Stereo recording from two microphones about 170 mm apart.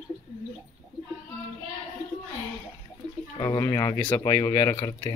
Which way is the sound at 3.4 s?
20° left (ahead or behind).